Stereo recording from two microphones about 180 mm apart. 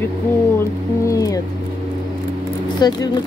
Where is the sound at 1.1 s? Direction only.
20° left (ahead or behind).